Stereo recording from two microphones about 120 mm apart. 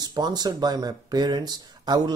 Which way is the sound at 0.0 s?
35° right (ahead or behind).